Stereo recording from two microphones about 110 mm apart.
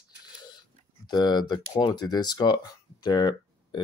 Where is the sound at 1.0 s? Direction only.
40° left (ahead or behind).